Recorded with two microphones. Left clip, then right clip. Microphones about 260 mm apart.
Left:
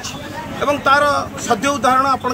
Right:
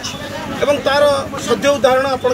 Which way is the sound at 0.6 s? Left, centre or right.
Centre.